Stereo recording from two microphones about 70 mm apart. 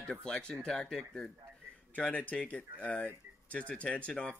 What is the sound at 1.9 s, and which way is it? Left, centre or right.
Speech, left.